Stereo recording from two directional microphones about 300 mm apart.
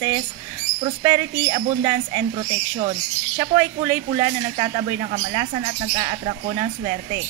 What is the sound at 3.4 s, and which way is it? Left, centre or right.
Speech, centre.